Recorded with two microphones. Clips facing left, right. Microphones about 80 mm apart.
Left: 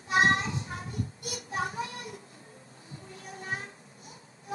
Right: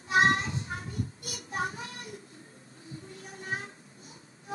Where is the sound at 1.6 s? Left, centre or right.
Left.